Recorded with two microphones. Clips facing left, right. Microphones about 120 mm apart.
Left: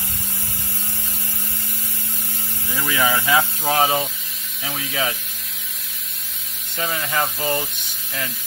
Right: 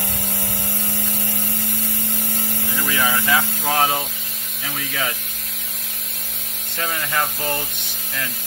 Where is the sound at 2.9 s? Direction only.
20° left (ahead or behind).